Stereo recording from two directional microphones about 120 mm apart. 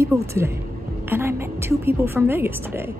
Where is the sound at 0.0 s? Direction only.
25° right (ahead or behind).